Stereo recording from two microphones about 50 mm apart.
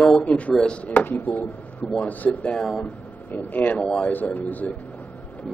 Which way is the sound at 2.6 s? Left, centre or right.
Centre.